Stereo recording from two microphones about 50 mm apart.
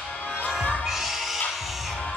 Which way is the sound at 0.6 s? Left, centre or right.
Left.